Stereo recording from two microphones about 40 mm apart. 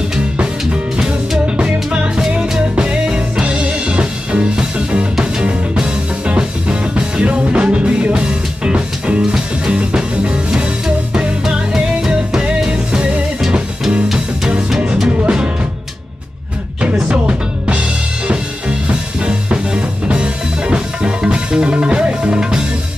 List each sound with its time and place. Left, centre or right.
1.6 s music: right
2.7 s music: right
9.2 s music: centre
9.8 s music: right
11.9 s music: right
15.0 s music: right
17.1 s music: right